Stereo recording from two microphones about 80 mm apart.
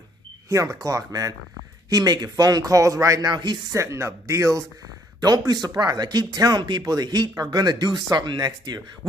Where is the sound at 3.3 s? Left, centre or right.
Right.